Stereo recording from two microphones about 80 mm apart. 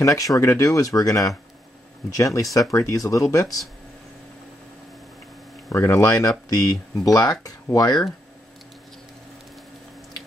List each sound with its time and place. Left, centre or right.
0.0 s speech: left
5.7 s speech: left
6.0 s speech: left